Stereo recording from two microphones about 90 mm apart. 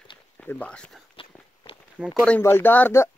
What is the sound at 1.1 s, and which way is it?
Walk, 90° left.